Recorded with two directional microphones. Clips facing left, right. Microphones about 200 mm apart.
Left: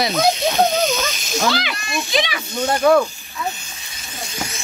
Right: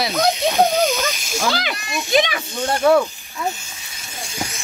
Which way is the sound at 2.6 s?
5° right (ahead or behind).